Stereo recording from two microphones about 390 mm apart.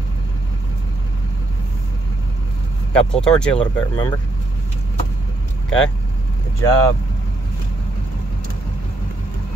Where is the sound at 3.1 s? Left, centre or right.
Centre.